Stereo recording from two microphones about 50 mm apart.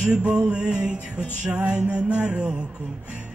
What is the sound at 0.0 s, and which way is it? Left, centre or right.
Music, right.